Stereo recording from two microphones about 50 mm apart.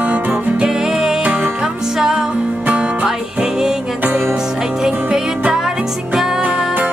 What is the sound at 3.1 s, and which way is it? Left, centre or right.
Music, centre.